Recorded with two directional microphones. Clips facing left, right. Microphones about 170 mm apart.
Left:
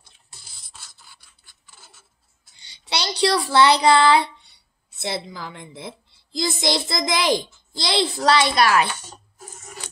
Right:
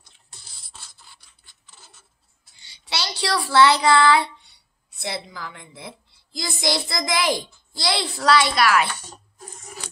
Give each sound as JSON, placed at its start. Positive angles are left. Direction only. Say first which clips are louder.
{"t": 0.6, "sound": "rub", "louder": "right 1 dB", "side_deg": 0}
{"t": 2.6, "sound": "a child's voice", "louder": "left 3 dB", "side_deg": 20}